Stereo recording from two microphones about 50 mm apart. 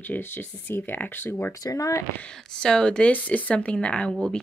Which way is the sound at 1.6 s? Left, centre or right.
Left.